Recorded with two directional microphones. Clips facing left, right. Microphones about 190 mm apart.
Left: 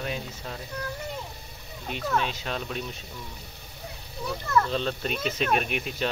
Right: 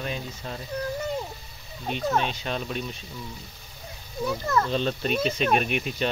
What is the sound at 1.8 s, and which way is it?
Speech, 40° right (ahead or behind).